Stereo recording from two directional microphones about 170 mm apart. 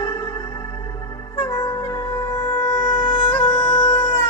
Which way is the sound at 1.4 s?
15° left (ahead or behind).